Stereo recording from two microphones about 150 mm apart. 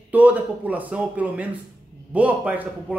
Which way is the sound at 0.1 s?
10° right (ahead or behind).